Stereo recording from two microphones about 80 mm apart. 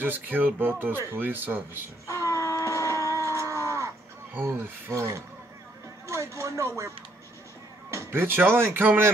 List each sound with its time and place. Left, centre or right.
0.0 s speech: right
2.0 s a sound: left
3.3 s a sound: right
3.6 s crow: right
4.3 s speech: right
7.9 s speech: right